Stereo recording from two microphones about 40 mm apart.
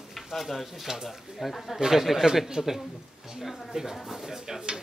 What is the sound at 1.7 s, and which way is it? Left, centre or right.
Speech, centre.